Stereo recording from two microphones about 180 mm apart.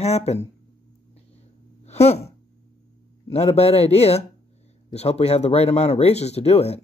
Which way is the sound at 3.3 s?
35° left (ahead or behind).